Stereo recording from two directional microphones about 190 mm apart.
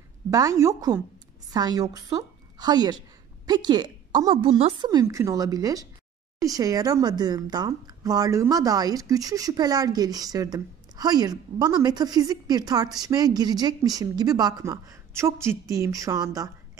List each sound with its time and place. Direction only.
0.3 s a woman's voice: 15° right (ahead or behind)